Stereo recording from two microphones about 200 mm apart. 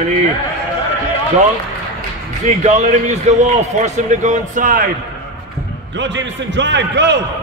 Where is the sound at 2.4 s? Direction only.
35° right (ahead or behind).